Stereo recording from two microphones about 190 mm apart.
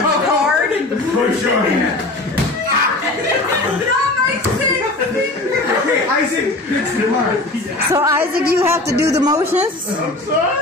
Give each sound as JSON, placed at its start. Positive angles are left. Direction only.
{"t": 7.9, "sound": "a man's voice", "side_deg": -15}